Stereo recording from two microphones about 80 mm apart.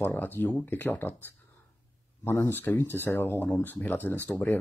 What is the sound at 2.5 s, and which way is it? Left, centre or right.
Speech, left.